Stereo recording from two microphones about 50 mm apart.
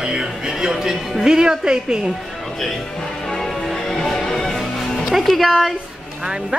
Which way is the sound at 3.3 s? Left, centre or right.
Centre.